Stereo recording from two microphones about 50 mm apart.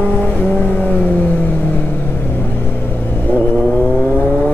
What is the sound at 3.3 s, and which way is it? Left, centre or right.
Vehicle, left.